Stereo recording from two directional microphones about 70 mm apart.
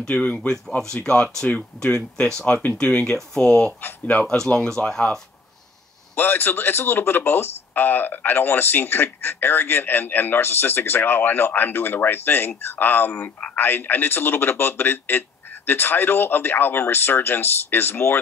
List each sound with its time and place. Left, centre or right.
0.0 s speech: centre
3.1 s speech: centre
4.6 s speech: centre
6.1 s speech: left